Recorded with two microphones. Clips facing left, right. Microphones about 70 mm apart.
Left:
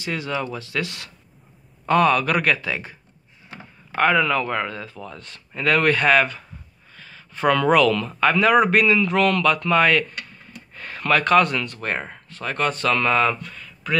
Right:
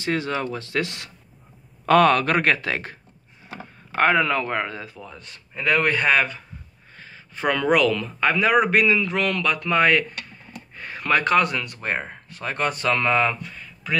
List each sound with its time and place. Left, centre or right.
0.0 s speech: right
2.2 s speech: right
2.6 s speech: right
3.9 s a man's voice: right; by 6.4 s centre
6.9 s a sound: right
7.3 s a man's voice: centre